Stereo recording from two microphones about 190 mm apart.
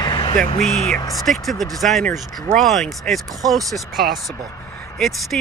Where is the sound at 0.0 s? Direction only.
25° left (ahead or behind).